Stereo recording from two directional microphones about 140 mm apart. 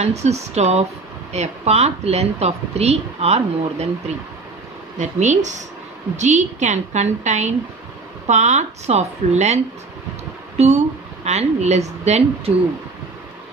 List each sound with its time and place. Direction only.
0.0 s speech: 50° right (ahead or behind)
4.9 s a woman's voice: 55° right (ahead or behind)
10.6 s speech: 50° right (ahead or behind)